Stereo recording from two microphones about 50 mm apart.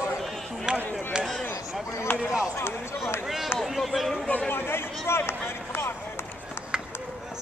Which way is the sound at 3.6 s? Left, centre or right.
Centre.